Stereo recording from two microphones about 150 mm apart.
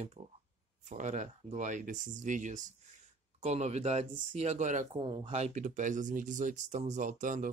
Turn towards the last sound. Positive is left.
turn(degrees=-60)  # may be behind; listen again after turning